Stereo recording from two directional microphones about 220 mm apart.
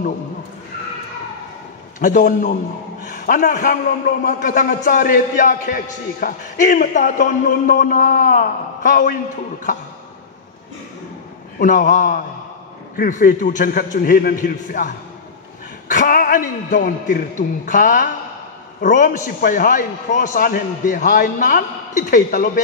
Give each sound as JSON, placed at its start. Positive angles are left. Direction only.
{"t": 2.0, "sound": "a man's voice", "side_deg": 35}
{"t": 11.6, "sound": "a man's voice", "side_deg": 35}
{"t": 15.9, "sound": "a man's voice", "side_deg": 40}